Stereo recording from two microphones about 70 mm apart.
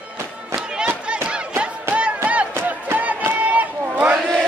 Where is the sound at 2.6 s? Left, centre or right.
Right.